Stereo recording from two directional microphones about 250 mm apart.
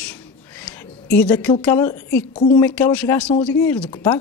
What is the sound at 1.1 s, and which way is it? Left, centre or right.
Speech, centre.